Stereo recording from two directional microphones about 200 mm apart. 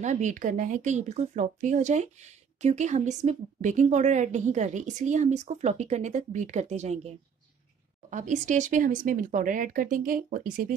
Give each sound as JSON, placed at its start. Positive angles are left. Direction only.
{"t": 0.0, "sound": "speech", "side_deg": -35}